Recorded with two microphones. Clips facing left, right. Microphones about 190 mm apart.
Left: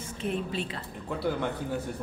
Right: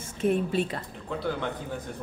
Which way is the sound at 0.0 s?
50° right (ahead or behind).